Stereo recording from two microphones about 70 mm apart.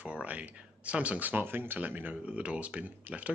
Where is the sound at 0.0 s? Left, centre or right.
Centre.